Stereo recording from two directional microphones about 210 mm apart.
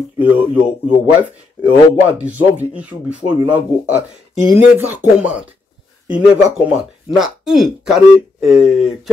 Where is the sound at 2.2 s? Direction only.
10° right (ahead or behind).